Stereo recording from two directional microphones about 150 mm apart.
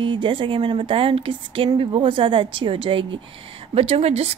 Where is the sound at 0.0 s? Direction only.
35° right (ahead or behind).